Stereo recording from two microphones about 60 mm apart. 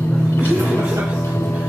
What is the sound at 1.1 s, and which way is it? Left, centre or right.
Music, left.